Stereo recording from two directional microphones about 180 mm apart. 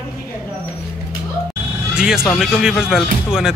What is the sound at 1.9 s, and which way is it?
Speech, 5° right (ahead or behind).